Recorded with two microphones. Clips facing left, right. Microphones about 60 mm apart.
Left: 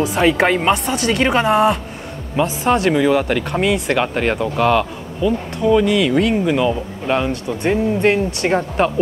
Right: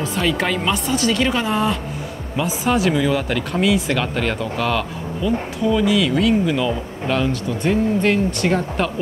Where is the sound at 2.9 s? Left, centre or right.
Centre.